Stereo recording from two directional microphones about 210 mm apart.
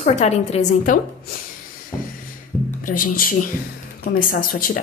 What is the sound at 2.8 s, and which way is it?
A woman's voice, 40° left (ahead or behind).